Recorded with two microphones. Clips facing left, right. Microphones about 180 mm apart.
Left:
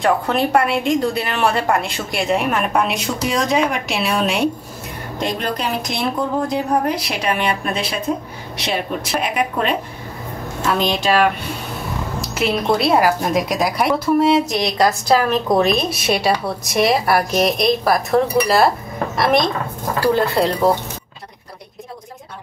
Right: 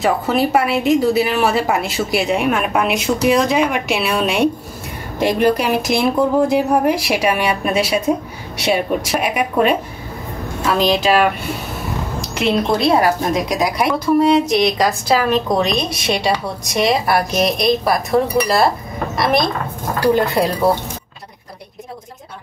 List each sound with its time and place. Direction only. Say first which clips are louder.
0.0 s a woman's voice: right 1 dB; 5° right (ahead or behind)
12.4 s a woman's voice: right 1 dB; 5° left (ahead or behind)
20.0 s a woman's voice: right 1 dB; 15° right (ahead or behind)